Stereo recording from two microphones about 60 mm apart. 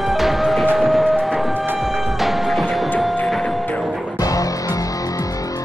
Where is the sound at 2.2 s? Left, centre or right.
Centre.